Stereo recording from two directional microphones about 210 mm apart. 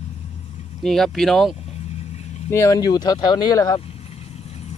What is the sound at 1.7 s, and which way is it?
Vehicle, 30° left (ahead or behind).